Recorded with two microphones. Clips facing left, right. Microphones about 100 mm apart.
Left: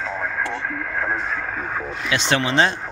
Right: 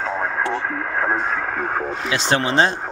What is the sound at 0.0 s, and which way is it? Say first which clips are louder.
Speech: right 3 dB; 35° right (ahead or behind).